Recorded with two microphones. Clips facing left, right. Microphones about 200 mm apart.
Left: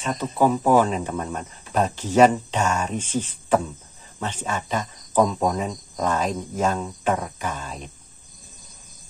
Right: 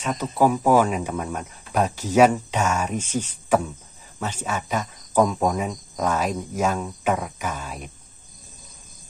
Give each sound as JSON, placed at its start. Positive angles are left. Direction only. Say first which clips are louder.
{"t": 0.0, "sound": "speech", "louder": "even", "side_deg": -10}